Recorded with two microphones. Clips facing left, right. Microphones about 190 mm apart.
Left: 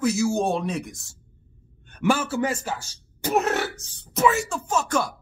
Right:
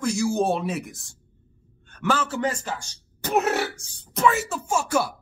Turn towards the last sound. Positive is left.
turn(degrees=-10)  # may be behind; listen again after turning